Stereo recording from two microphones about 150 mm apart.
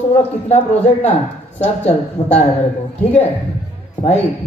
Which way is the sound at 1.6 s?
45° left (ahead or behind).